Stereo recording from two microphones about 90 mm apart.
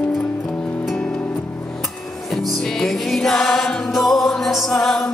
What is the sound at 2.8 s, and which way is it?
Music, 5° left (ahead or behind).